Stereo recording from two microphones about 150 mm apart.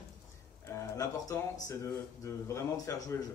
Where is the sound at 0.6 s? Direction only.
20° left (ahead or behind).